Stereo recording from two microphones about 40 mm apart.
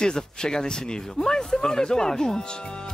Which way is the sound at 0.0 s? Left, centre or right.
Centre.